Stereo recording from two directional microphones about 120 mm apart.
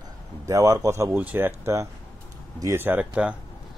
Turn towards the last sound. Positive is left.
turn(degrees=-10)  # may be behind; listen again after turning